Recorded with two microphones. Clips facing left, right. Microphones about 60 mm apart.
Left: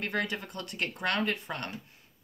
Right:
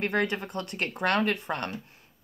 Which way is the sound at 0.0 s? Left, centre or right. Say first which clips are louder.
Right 5 dB; right.